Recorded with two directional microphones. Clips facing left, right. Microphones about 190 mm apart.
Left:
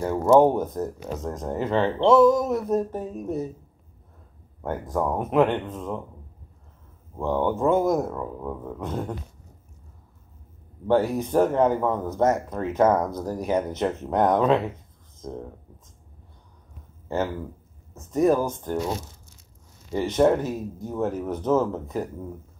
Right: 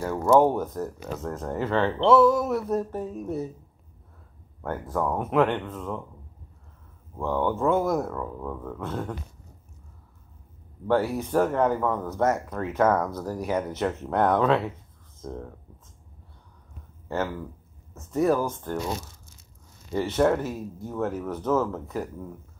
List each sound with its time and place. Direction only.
0.0 s speech: 20° left (ahead or behind)
4.6 s speech: 15° left (ahead or behind)
7.2 s speech: 20° left (ahead or behind)
10.9 s speech: 20° left (ahead or behind)
18.1 s speech: 20° left (ahead or behind)